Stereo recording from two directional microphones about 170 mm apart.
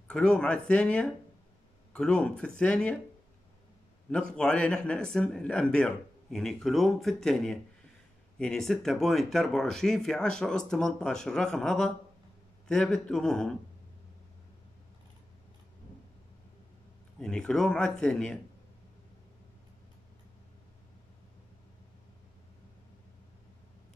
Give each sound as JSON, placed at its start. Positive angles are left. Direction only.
{"t": 0.1, "sound": "a man's voice", "side_deg": 5}
{"t": 4.1, "sound": "a man's voice", "side_deg": 5}
{"t": 17.2, "sound": "a man's voice", "side_deg": 5}